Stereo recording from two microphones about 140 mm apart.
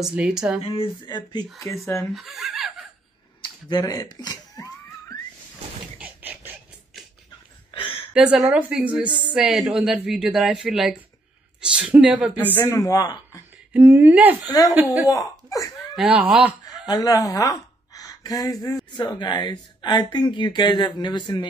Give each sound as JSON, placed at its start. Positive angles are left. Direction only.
{"t": 0.0, "sound": "speech", "side_deg": -5}
{"t": 1.0, "sound": "speech", "side_deg": 30}
{"t": 2.1, "sound": "speech", "side_deg": 0}
{"t": 3.6, "sound": "speech", "side_deg": 30}
{"t": 5.9, "sound": "a sound", "side_deg": -10}
{"t": 7.7, "sound": "a sound", "side_deg": 40}
{"t": 8.1, "sound": "a woman's voice", "side_deg": -5}
{"t": 12.5, "sound": "speech", "side_deg": 25}
{"t": 13.7, "sound": "a woman's voice", "side_deg": -15}
{"t": 14.4, "sound": "speech", "side_deg": 25}
{"t": 15.9, "sound": "speech", "side_deg": -5}
{"t": 16.8, "sound": "a woman's voice", "side_deg": 25}